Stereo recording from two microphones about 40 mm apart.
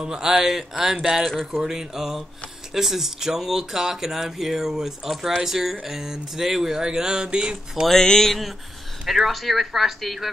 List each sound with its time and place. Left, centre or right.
0.0 s speech: centre
7.8 s a sound: centre
8.3 s speech: centre